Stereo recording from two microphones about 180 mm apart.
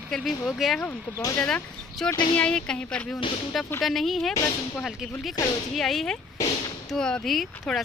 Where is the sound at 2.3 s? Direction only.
5° left (ahead or behind).